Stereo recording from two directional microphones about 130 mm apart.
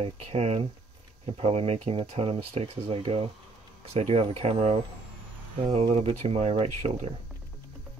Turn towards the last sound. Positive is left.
turn(degrees=-50)  # may be behind; listen again after turning